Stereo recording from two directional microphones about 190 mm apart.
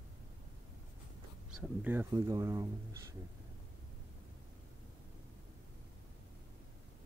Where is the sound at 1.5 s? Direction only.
10° right (ahead or behind).